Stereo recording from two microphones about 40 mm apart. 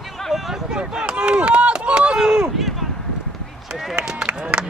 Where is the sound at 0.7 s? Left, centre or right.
Centre.